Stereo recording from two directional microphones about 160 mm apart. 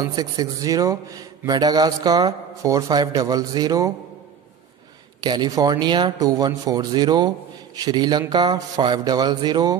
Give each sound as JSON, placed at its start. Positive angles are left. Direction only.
{"t": 0.0, "sound": "speech", "side_deg": -25}
{"t": 5.2, "sound": "speech", "side_deg": -25}